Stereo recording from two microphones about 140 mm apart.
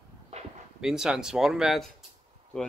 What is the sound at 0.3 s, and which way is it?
Dog, 45° right (ahead or behind).